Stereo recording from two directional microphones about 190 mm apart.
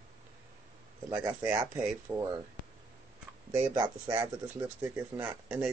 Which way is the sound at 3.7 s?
20° right (ahead or behind).